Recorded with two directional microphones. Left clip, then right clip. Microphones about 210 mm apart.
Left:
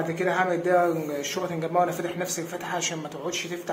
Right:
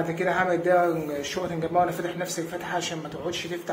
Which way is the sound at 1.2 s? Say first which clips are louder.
Even; 10° left (ahead or behind).